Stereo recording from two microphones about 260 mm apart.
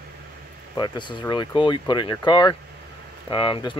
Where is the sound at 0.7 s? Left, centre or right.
Centre.